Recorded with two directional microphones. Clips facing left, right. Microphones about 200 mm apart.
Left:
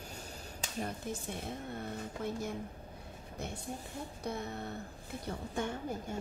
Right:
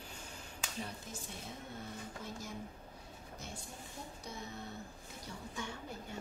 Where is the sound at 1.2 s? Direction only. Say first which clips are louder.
Left 7 dB; 60° left (ahead or behind).